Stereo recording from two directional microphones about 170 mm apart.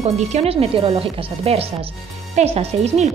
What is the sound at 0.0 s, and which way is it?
Speech, 40° right (ahead or behind).